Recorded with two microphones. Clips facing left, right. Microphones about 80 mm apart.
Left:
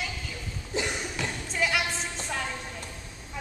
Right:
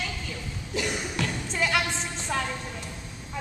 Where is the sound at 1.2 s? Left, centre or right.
Centre.